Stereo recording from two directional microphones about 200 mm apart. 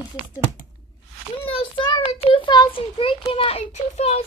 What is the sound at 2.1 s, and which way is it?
A child's voice, 25° left (ahead or behind).